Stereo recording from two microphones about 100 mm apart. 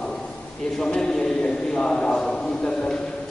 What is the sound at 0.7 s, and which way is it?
A man's voice, 5° left (ahead or behind).